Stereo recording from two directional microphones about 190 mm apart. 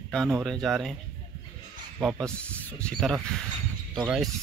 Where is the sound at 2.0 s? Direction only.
5° right (ahead or behind).